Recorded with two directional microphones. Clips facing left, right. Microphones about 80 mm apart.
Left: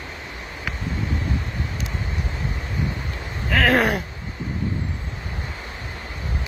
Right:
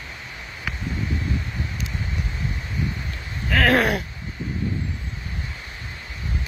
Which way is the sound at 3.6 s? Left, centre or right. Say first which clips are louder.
Even; centre.